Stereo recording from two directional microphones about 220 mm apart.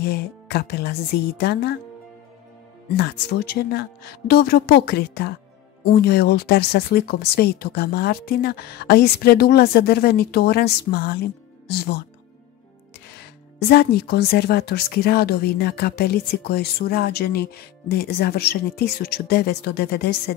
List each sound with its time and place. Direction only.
0.0 s speech: 45° left (ahead or behind)
3.0 s speech: 45° left (ahead or behind)
13.7 s speech: 45° left (ahead or behind)